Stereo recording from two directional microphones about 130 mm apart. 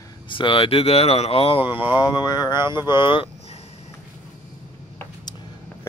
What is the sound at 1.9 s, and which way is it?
Speech, 35° left (ahead or behind).